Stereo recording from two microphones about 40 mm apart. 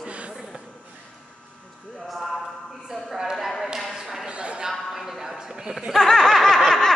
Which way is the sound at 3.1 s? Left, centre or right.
Centre.